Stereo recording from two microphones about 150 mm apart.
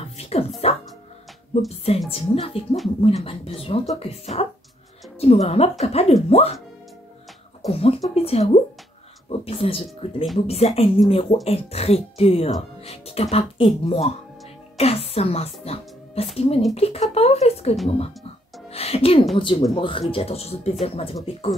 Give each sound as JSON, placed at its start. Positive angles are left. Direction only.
{"t": 0.2, "sound": "music", "side_deg": 45}
{"t": 2.0, "sound": "speech", "side_deg": 40}
{"t": 7.6, "sound": "speech", "side_deg": 40}
{"t": 18.7, "sound": "music", "side_deg": 40}
{"t": 19.3, "sound": "speech", "side_deg": 35}